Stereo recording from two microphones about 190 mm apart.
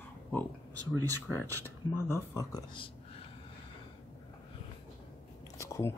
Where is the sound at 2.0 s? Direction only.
15° left (ahead or behind).